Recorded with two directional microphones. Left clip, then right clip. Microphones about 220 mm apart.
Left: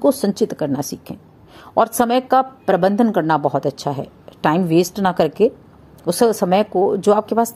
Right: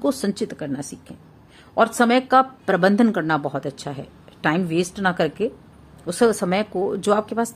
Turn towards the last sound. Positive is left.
turn(degrees=15)  # may be behind; listen again after turning